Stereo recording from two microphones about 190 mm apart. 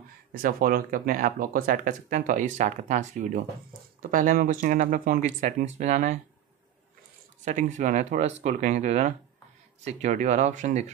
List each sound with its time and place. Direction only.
0.3 s speech: 50° right (ahead or behind)
7.4 s speech: 40° right (ahead or behind)